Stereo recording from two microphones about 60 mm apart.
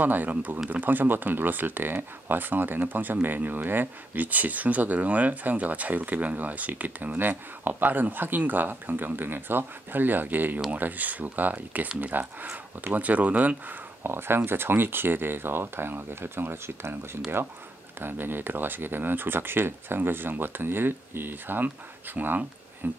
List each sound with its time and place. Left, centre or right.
0.0 s speech: right
14.0 s speech: right